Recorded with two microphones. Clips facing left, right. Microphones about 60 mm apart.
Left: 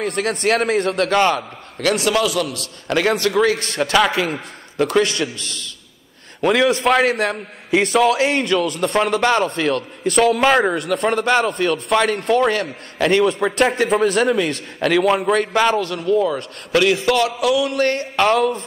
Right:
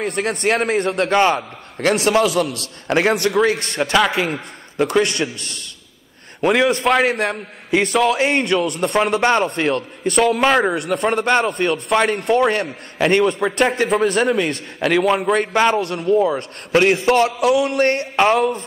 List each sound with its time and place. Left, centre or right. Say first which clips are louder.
0.0 s a man's voice: even; centre
1.3 s a man's voice: right 1 dB; right
3.1 s speech: right 1 dB; centre
3.3 s a man's voice: even; centre
6.4 s a man's voice: even; centre
10.0 s a man's voice: left 1 dB; centre
15.8 s a man's voice: right 1 dB; right
18.1 s speech: even; centre